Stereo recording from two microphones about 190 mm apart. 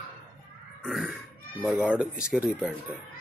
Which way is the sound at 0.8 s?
5° right (ahead or behind).